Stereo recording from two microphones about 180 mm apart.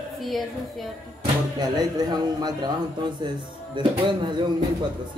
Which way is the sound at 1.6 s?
25° right (ahead or behind).